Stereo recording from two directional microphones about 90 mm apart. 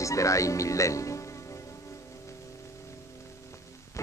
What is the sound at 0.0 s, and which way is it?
Speech, 35° left (ahead or behind).